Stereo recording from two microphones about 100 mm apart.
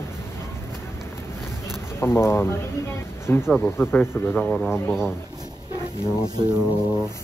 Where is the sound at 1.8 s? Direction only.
25° left (ahead or behind).